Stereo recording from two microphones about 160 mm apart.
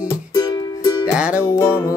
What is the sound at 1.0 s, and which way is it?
Music, 5° right (ahead or behind).